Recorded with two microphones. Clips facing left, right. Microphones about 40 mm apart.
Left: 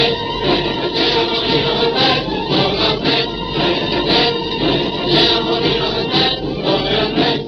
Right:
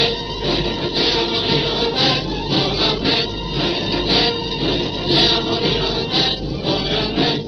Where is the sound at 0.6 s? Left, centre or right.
Centre.